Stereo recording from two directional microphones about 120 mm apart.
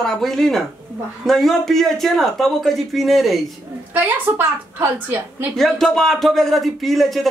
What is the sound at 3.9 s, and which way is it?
A woman's voice, 15° right (ahead or behind).